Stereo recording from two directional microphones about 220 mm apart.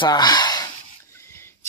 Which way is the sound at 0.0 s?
20° left (ahead or behind).